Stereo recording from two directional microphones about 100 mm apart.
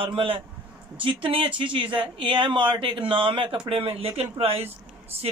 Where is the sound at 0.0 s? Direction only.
65° right (ahead or behind).